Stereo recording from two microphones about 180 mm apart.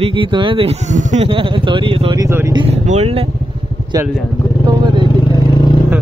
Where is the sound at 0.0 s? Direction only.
30° right (ahead or behind).